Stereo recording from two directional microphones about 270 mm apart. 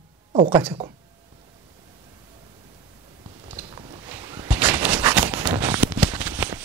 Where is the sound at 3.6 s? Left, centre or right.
Centre.